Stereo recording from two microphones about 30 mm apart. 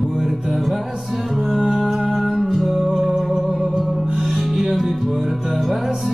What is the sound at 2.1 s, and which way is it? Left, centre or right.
Music, centre.